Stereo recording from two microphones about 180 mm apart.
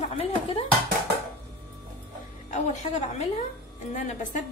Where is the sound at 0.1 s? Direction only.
35° left (ahead or behind).